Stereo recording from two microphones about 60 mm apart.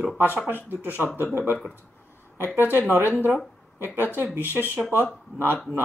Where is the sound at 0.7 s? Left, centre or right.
Right.